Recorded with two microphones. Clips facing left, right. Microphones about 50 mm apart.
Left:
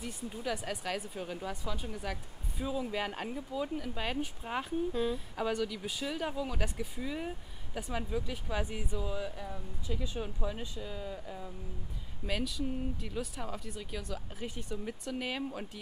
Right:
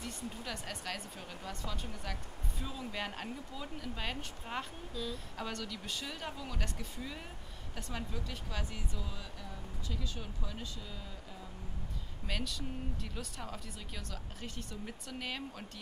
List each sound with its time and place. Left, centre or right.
0.0 s speech: centre
12.3 s speech: centre